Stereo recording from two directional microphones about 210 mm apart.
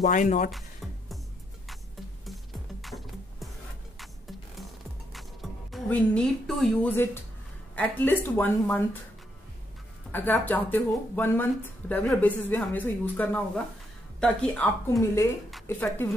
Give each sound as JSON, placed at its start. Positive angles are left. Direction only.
{"t": 0.0, "sound": "speech", "side_deg": 35}
{"t": 0.5, "sound": "music", "side_deg": 0}
{"t": 2.8, "sound": "music", "side_deg": 0}
{"t": 5.1, "sound": "speech", "side_deg": 0}
{"t": 10.1, "sound": "speech", "side_deg": 10}